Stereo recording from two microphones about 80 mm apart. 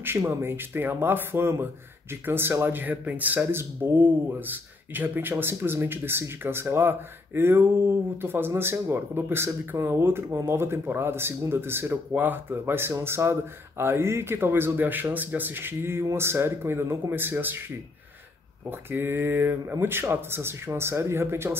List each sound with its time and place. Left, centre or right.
0.0 s speech: right
18.7 s speech: right